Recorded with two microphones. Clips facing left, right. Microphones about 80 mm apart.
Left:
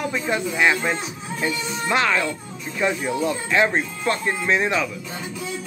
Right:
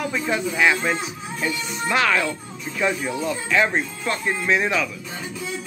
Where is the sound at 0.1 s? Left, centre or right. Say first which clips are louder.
Even; centre.